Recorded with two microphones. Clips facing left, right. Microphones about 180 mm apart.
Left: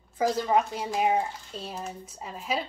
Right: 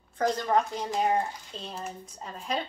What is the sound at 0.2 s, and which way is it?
Speech, 5° left (ahead or behind).